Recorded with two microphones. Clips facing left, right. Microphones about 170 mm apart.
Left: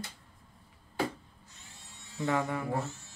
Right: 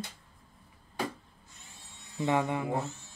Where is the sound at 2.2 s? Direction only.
20° right (ahead or behind).